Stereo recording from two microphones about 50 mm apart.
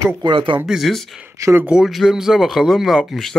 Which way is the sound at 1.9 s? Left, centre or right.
Centre.